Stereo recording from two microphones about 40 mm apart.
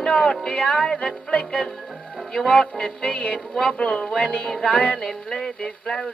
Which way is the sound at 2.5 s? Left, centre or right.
Left.